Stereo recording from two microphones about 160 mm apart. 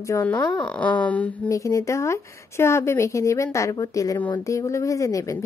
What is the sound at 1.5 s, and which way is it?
Speech, 20° left (ahead or behind).